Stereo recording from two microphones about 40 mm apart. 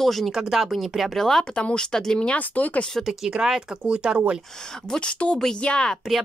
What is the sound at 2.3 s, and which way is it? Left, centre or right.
Speech, left.